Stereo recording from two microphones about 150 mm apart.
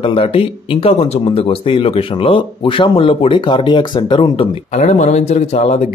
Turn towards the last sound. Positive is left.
turn(degrees=45)  # may be behind; listen again after turning